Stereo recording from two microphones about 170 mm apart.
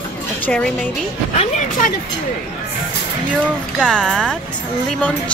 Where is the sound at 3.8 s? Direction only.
5° left (ahead or behind).